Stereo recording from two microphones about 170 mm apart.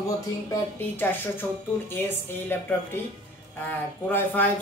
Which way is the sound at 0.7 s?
10° left (ahead or behind).